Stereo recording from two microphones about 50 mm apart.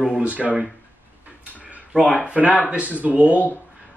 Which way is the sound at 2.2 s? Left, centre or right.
Right.